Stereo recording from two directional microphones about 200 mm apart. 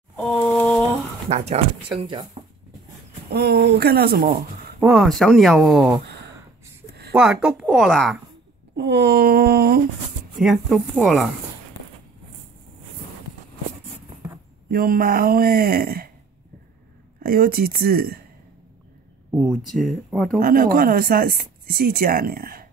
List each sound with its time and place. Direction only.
0.2 s a sound: 5° left (ahead or behind)
1.3 s speech: 35° right (ahead or behind)
3.3 s speech: 55° right (ahead or behind)
4.7 s speech: centre (ahead or behind)
7.2 s speech: 5° right (ahead or behind)
8.7 s speech: 55° right (ahead or behind)
10.4 s speech: centre (ahead or behind)
14.7 s speech: 50° right (ahead or behind)
17.2 s speech: 50° right (ahead or behind)
19.3 s speech: centre (ahead or behind)
20.3 s speech: 45° right (ahead or behind)